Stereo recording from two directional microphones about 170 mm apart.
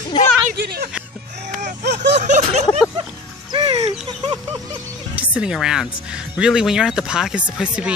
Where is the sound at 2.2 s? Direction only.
45° right (ahead or behind).